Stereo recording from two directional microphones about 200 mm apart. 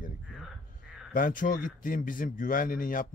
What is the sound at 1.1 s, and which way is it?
A man's voice, 45° left (ahead or behind).